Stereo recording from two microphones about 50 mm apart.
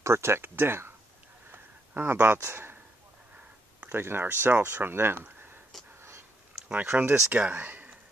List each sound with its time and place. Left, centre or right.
0.0 s speech: right
1.5 s a sound: right
2.4 s speech: right
3.9 s speech: right
5.9 s a sound: right
6.9 s speech: right
7.3 s speech: right